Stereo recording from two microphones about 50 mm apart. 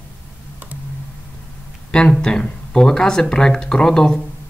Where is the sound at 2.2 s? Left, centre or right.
Centre.